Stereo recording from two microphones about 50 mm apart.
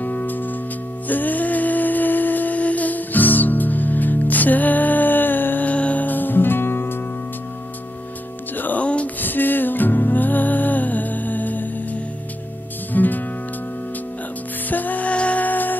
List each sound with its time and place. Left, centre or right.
0.0 s music: left
5.7 s music: left
8.5 s music: left
8.8 s a sound: left
9.2 s music: left
14.7 s music: left